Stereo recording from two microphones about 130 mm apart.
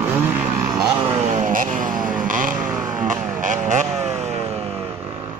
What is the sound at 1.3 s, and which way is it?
Vehicle, 80° right.